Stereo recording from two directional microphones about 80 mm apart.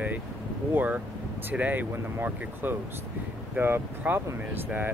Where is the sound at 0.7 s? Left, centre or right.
Right.